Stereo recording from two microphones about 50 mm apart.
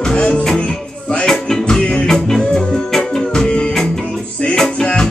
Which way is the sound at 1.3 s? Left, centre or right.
Centre.